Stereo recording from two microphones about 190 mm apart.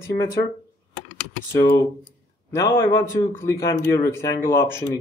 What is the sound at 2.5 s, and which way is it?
A man's voice, 15° left (ahead or behind).